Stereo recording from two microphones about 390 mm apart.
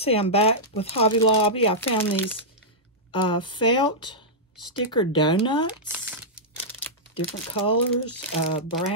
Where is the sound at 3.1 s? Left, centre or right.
Centre.